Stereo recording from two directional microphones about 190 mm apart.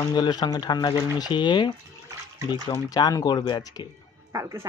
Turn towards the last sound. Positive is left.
turn(degrees=-15)  # may be behind; listen again after turning